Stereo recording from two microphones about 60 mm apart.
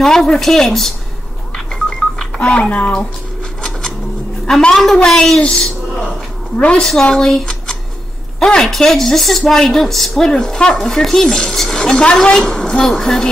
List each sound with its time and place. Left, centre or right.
0.0 s a woman's voice: centre
1.7 s telephone dialing: centre
4.5 s a woman's voice: centre
5.4 s a sound: centre
6.5 s a woman's voice: left
6.8 s a woman's voice: centre